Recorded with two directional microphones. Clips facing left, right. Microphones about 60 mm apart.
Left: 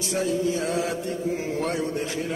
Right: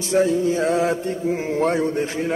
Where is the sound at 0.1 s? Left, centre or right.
Right.